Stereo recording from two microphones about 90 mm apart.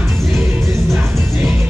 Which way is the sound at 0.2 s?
Centre (ahead or behind).